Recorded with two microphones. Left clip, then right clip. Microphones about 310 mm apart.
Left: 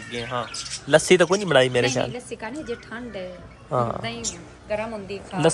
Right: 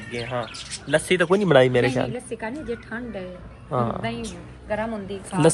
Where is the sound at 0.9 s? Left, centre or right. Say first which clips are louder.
Left 4 dB; left.